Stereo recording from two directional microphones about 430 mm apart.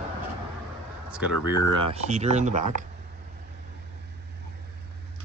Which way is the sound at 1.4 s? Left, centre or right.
Left.